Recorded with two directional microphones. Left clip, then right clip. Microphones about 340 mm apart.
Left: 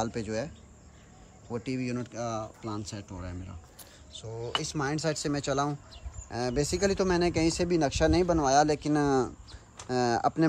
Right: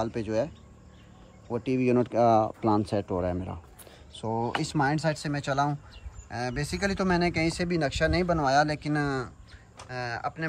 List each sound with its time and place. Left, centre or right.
0.0 s speech: centre
1.5 s speech: centre